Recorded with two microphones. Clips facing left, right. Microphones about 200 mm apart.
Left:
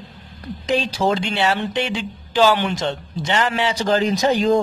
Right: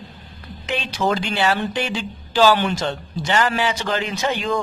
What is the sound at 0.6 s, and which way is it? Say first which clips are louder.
Speech: left 3 dB; 35° left (ahead or behind).